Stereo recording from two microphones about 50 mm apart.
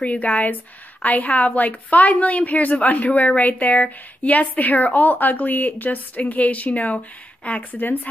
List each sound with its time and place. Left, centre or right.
0.0 s a woman's voice: left